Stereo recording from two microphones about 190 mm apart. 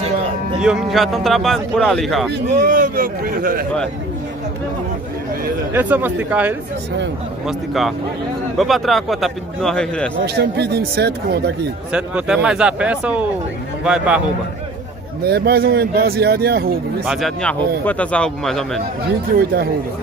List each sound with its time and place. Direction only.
0.6 s speech: 5° right (ahead or behind)
2.6 s speech: 45° right (ahead or behind)
5.7 s speech: 10° right (ahead or behind); by 10.1 s 5° left (ahead or behind)
10.2 s speech: 60° right (ahead or behind)
11.9 s speech: 5° right (ahead or behind)
15.2 s speech: 55° right (ahead or behind)
17.0 s speech: centre (ahead or behind)
19.3 s speech: 55° right (ahead or behind)